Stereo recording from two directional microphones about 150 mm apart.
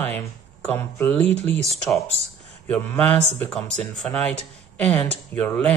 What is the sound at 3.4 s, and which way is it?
Speech, 5° left (ahead or behind).